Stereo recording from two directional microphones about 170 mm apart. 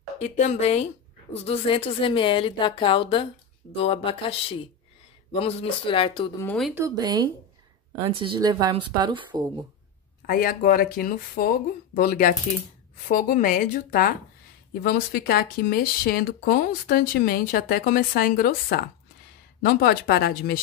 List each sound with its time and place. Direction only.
0.2 s a woman's voice: 45° left (ahead or behind)
6.7 s speech: 20° right (ahead or behind)
10.2 s speech: 60° left (ahead or behind)